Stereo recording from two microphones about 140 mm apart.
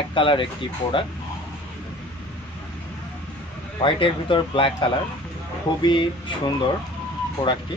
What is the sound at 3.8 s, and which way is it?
Speech, 40° left (ahead or behind).